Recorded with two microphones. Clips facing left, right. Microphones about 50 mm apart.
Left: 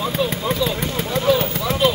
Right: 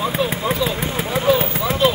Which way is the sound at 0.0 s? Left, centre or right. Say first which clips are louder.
Right 1 dB; centre.